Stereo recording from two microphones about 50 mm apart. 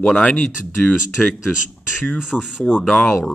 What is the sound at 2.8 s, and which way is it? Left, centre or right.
Speech, centre.